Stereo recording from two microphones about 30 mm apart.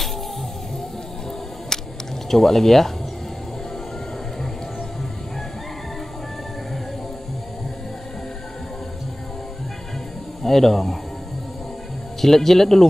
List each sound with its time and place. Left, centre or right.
1.7 s camera: centre
2.3 s speech: centre
10.4 s speech: centre
12.2 s speech: centre